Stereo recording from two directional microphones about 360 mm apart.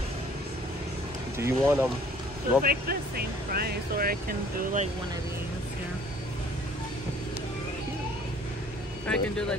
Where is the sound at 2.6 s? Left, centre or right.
Right.